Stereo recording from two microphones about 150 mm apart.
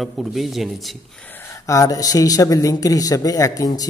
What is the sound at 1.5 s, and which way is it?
Speech, 20° left (ahead or behind).